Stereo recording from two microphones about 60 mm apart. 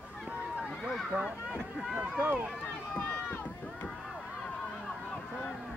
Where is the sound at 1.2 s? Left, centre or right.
Right.